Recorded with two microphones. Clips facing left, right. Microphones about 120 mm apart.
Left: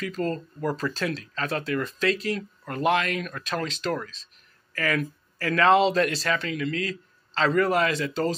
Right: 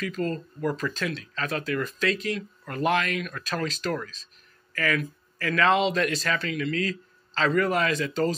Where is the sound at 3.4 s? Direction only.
20° left (ahead or behind).